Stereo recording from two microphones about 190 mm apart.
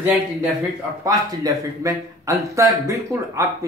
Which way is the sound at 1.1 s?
15° right (ahead or behind).